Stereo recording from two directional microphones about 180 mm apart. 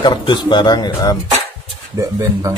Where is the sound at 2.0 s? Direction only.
15° right (ahead or behind).